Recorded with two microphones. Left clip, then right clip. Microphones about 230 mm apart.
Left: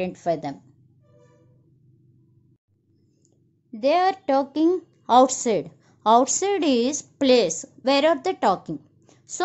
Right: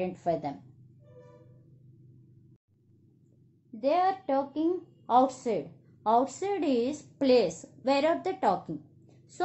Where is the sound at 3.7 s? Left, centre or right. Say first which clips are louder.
Left 6 dB; left.